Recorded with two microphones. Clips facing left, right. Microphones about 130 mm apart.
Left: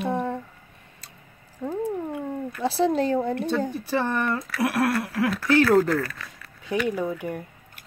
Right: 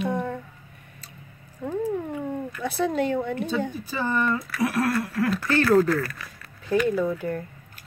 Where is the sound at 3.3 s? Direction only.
65° left (ahead or behind).